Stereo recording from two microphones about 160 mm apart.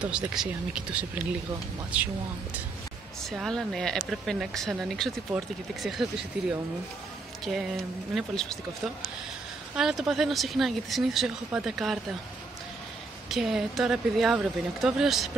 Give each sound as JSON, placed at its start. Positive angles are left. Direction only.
{"t": 0.0, "sound": "speech", "side_deg": -5}
{"t": 3.3, "sound": "speech", "side_deg": 0}
{"t": 6.4, "sound": "speech", "side_deg": -90}
{"t": 7.4, "sound": "speech", "side_deg": -5}
{"t": 13.3, "sound": "speech", "side_deg": 0}